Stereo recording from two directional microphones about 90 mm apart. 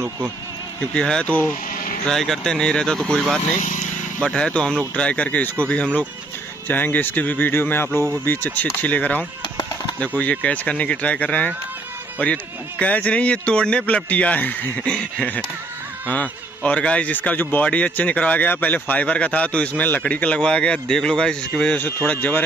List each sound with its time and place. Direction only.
0.9 s speech: 10° left (ahead or behind)
2.0 s speech: 5° left (ahead or behind)